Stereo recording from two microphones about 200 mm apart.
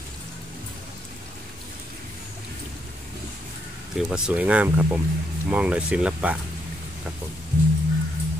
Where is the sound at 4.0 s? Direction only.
5° right (ahead or behind).